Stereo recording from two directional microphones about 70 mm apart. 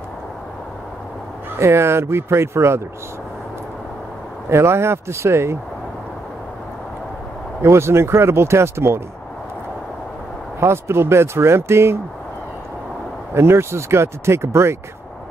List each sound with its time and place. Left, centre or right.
1.6 s speech: right
4.5 s speech: right
7.6 s speech: right
10.6 s speech: right
13.3 s speech: right